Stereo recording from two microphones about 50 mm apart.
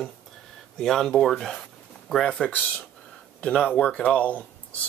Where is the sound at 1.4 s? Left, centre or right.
Centre.